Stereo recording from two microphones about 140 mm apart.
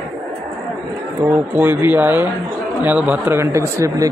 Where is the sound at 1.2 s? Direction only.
15° right (ahead or behind).